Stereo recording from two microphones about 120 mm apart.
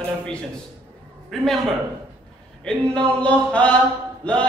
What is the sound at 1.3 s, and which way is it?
Speech, centre (ahead or behind).